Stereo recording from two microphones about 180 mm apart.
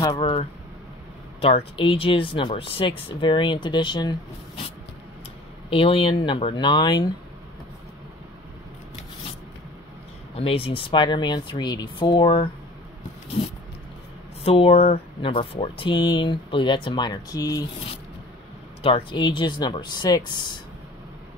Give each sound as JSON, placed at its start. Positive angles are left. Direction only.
{"t": 0.0, "sound": "speech", "side_deg": 20}
{"t": 1.4, "sound": "speech", "side_deg": 35}
{"t": 10.3, "sound": "speech", "side_deg": 30}
{"t": 14.4, "sound": "speech", "side_deg": 35}
{"t": 18.8, "sound": "speech", "side_deg": 30}